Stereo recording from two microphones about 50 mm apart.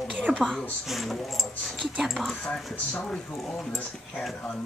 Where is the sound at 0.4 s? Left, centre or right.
Centre.